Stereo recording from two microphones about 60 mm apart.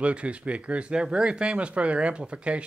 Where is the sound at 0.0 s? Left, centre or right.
Centre.